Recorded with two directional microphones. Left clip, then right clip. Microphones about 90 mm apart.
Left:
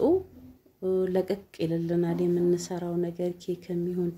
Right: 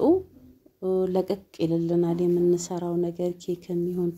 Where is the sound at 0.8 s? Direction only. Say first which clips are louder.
Right 2 dB; 25° right (ahead or behind).